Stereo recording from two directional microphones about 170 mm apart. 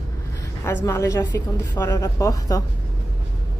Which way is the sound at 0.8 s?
15° left (ahead or behind).